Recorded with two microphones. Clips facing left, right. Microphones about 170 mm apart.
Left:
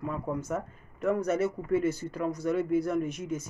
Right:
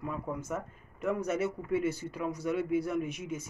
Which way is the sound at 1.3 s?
40° left (ahead or behind).